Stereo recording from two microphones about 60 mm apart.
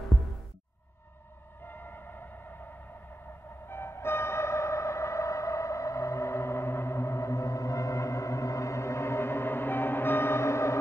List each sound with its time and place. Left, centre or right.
1.7 s music: left
3.6 s music: left